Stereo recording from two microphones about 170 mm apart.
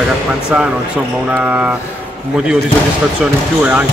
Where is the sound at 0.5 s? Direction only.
5° right (ahead or behind).